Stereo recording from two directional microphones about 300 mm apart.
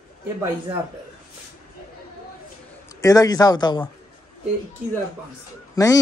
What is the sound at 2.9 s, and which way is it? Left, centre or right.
Speech, centre.